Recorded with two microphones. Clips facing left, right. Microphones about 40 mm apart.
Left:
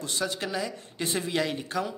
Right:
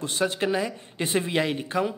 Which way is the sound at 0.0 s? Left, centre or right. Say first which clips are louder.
Right 5 dB; right.